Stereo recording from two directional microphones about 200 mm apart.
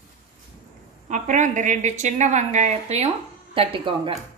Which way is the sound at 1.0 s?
40° right (ahead or behind).